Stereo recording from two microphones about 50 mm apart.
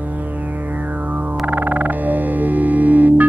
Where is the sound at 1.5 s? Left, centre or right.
Right.